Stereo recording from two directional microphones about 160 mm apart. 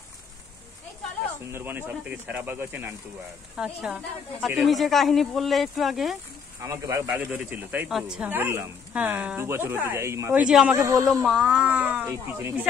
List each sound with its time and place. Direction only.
1.5 s a woman's voice: 15° right (ahead or behind)
6.6 s speech: 20° right (ahead or behind)
11.2 s speech: 5° right (ahead or behind)